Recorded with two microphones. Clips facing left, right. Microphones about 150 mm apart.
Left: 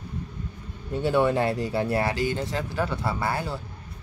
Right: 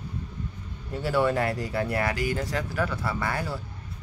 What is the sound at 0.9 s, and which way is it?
Speech, 25° left (ahead or behind).